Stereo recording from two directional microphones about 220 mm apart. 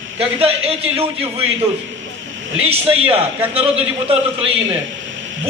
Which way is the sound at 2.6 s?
25° right (ahead or behind).